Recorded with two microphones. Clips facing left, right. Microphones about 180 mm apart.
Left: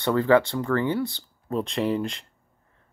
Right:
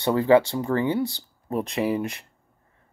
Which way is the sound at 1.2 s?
15° right (ahead or behind).